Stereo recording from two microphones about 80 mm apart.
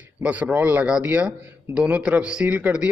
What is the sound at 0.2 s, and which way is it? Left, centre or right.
Speech, centre.